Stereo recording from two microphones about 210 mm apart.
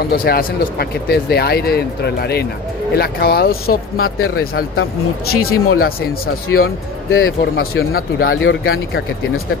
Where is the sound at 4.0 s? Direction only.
90° left.